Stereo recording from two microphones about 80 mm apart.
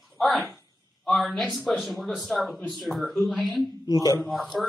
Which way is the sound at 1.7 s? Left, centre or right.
Centre.